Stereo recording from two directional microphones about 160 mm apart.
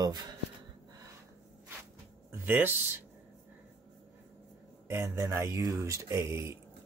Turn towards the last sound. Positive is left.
turn(degrees=-20)  # may be behind; listen again after turning